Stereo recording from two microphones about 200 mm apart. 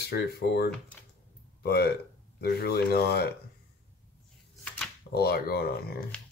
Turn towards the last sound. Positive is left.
turn(degrees=50)  # may be behind; listen again after turning